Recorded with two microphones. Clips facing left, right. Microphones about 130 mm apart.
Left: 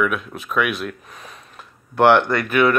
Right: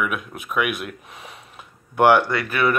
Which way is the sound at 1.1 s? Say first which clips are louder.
Even; 10° right (ahead or behind).